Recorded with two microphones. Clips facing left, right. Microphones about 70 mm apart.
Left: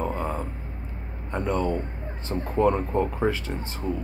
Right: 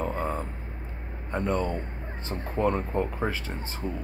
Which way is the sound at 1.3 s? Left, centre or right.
Centre.